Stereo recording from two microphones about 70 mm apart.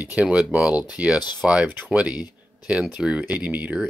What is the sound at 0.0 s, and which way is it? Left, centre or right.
Speech, centre.